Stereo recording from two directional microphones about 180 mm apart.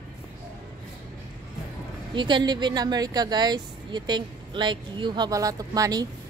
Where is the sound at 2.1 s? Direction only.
25° right (ahead or behind).